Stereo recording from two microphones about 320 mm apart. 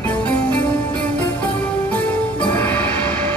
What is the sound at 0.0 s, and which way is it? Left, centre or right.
Music, centre.